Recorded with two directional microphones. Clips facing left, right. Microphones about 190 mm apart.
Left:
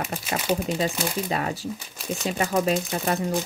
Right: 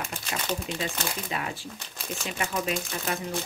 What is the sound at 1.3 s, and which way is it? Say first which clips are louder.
Speech: left 6 dB; 40° left (ahead or behind).